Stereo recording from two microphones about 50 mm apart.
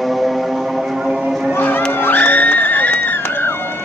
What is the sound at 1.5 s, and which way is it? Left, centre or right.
Music, left.